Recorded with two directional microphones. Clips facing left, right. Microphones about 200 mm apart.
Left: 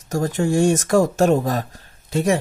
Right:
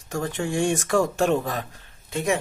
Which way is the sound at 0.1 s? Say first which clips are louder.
Left 6 dB; 40° left (ahead or behind).